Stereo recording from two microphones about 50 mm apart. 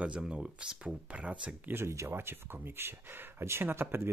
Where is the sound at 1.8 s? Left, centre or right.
Right.